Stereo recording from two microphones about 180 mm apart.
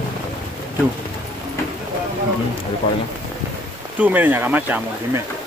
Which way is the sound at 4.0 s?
10° right (ahead or behind).